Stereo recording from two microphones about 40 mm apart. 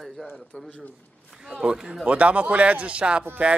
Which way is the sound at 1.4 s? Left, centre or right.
Centre.